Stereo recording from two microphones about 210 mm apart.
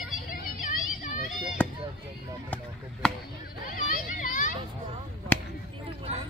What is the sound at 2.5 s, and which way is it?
Chop, 5° left (ahead or behind).